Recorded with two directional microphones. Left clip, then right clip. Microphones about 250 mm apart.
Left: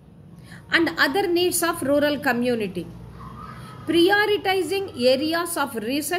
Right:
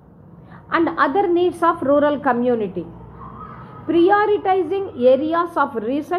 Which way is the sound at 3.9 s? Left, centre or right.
Left.